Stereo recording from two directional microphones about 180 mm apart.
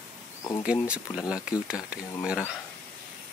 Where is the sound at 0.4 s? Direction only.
15° left (ahead or behind).